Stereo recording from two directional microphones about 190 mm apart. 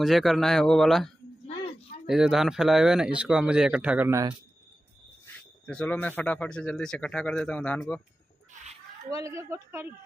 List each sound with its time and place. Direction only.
0.0 s speech: centre (ahead or behind)
1.5 s a sound: 30° left (ahead or behind)
2.0 s speech: centre (ahead or behind)
5.2 s speech: 5° left (ahead or behind)
9.1 s a woman's voice: 15° right (ahead or behind)